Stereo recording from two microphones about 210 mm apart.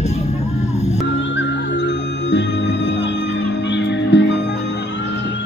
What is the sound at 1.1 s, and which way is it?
Music, 60° left (ahead or behind).